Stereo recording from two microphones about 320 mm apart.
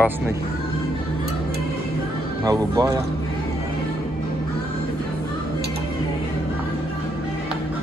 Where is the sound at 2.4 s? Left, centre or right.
Centre.